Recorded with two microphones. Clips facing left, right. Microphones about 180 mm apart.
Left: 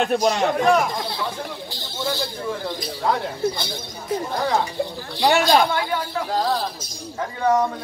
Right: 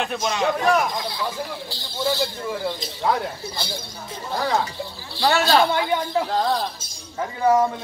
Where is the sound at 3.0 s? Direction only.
Centre (ahead or behind).